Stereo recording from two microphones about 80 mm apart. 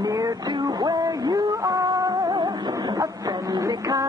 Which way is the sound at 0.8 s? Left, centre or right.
Right.